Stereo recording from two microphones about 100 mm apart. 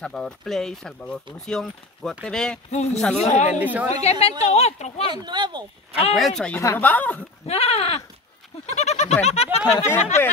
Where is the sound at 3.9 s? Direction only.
90° left.